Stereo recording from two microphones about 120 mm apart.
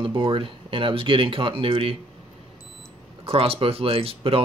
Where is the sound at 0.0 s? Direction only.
45° right (ahead or behind).